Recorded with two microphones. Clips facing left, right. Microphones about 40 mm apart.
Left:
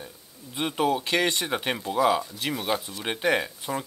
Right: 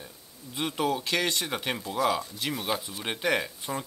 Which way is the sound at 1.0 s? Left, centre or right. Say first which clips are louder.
Left 3 dB; left.